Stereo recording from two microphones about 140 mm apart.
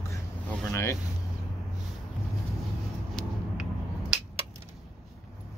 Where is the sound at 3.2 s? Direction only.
5° left (ahead or behind).